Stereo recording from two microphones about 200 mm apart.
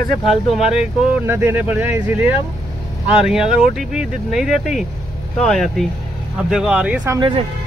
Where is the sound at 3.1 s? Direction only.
5° right (ahead or behind).